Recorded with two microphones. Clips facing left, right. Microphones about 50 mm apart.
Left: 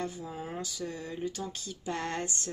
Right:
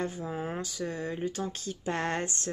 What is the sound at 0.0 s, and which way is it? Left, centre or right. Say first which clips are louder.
Speech: right 4 dB; right.